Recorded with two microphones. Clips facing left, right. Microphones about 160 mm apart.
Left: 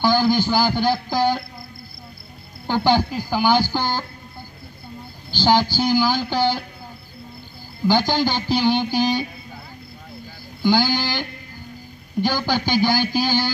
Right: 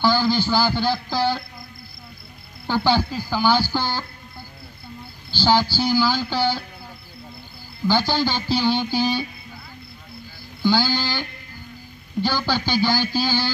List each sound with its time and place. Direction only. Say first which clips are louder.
0.0 s a sound: left 2 dB; 15° left (ahead or behind)
2.6 s speech: left 2 dB; 15° left (ahead or behind)
5.3 s speech: left 1 dB; 15° left (ahead or behind)
7.8 s speech: left 2 dB; 15° left (ahead or behind)
10.6 s speech: left 2 dB; 15° left (ahead or behind)